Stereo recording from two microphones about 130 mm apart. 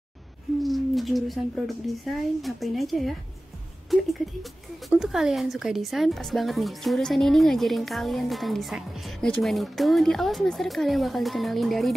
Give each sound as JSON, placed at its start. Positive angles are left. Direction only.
{"t": 0.6, "sound": "speech", "side_deg": 0}